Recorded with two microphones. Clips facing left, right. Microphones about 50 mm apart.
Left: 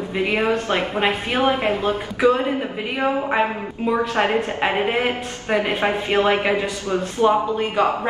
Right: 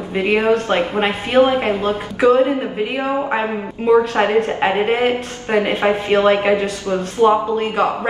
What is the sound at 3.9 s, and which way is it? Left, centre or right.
A woman's voice, right.